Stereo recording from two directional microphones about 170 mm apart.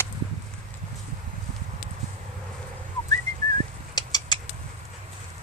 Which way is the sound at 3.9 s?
25° left (ahead or behind).